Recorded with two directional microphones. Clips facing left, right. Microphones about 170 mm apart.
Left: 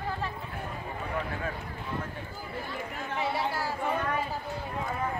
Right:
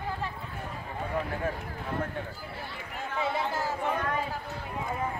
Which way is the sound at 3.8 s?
5° left (ahead or behind).